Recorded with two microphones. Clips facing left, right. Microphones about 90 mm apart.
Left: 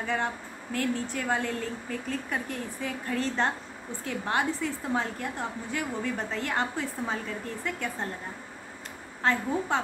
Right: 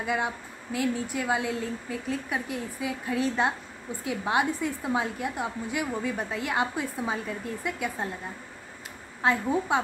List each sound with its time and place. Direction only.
0.0 s a woman's voice: 10° right (ahead or behind)
9.2 s a woman's voice: 10° right (ahead or behind)